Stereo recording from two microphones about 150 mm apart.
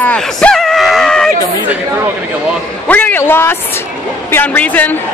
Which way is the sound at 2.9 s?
10° left (ahead or behind).